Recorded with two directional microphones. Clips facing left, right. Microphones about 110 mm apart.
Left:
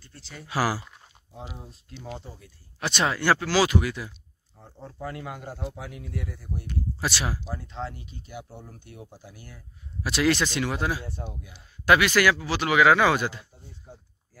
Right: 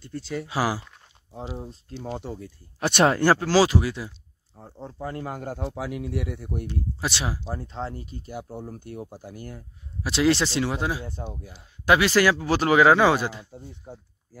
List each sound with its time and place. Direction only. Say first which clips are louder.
0.5 s speech: left 1 dB; 20° right (ahead or behind)
2.8 s speech: right 6 dB; 50° right (ahead or behind)
5.7 s speech: right 7 dB; 90° right; by 6.7 s 65° right (ahead or behind)
6.7 s speech: left 3 dB; 25° right (ahead or behind); by 9.7 s 50° right (ahead or behind)
10.0 s speech: right 2 dB; 25° right (ahead or behind)
13.9 s speech: right 4 dB; 40° right (ahead or behind)